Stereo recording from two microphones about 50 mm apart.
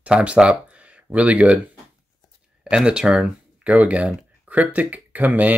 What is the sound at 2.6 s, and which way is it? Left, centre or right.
Speech, centre.